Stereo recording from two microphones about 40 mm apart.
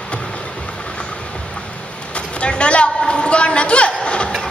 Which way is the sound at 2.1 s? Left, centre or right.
Left.